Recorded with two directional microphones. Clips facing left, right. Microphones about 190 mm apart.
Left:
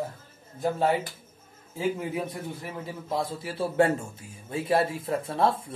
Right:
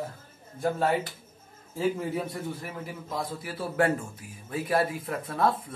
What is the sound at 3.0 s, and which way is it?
Speech, 25° left (ahead or behind).